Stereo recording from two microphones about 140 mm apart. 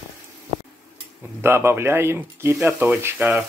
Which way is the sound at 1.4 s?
20° right (ahead or behind).